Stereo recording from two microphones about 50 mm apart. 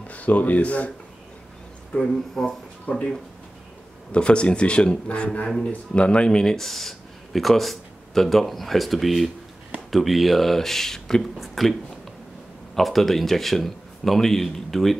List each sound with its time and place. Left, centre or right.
0.0 s speech: left
1.9 s speech: centre
2.9 s speech: left
4.1 s speech: left; by 11.7 s centre
12.7 s speech: centre